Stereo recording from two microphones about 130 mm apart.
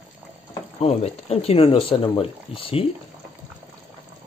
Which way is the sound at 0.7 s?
55° left (ahead or behind).